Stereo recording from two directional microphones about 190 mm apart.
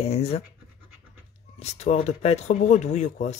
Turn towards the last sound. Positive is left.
turn(degrees=40)  # may be behind; listen again after turning